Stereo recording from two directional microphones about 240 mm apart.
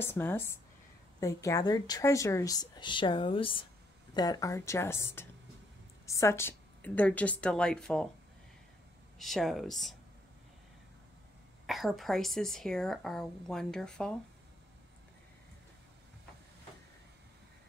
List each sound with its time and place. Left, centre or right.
0.0 s a woman's voice: centre
9.2 s a woman's voice: centre
11.6 s a woman's voice: centre